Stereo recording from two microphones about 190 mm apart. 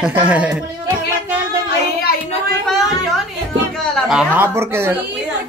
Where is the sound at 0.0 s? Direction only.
5° right (ahead or behind).